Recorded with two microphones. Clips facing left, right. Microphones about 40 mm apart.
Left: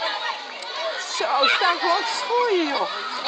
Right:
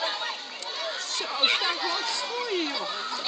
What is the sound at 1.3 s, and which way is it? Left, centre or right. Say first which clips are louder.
Speech: left 7 dB; centre.